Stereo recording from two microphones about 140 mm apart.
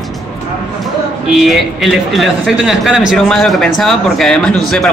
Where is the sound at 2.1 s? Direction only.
Centre (ahead or behind).